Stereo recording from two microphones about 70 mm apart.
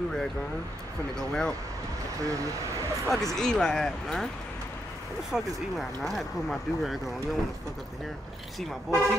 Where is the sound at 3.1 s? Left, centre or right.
Centre.